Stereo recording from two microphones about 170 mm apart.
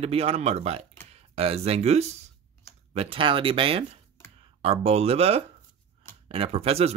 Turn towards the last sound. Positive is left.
turn(degrees=-35)  # may be behind; listen again after turning